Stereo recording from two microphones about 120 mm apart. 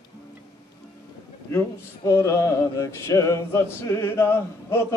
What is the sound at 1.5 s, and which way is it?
Speech, 20° left (ahead or behind).